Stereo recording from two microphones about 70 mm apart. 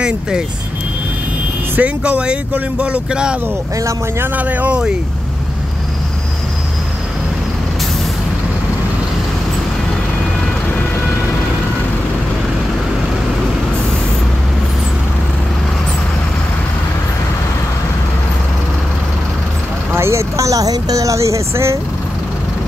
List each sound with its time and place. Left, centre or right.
1.8 s speech: centre
4.2 s speech: right
19.9 s speech: right